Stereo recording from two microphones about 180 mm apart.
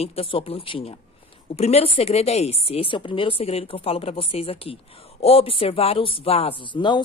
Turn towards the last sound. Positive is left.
turn(degrees=25)  # may be behind; listen again after turning